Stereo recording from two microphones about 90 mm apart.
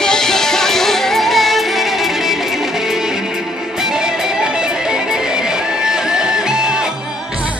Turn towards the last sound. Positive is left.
turn(degrees=-10)  # may be behind; listen again after turning